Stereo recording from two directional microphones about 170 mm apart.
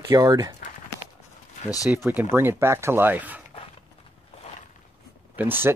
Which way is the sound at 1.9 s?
10° right (ahead or behind).